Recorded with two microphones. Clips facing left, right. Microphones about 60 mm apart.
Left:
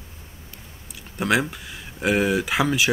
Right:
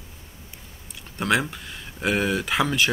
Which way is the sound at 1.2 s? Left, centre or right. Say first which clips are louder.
Left 1 dB; centre.